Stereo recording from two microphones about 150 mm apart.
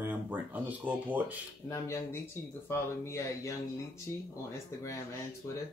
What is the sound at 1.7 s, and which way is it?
Speech, 20° left (ahead or behind).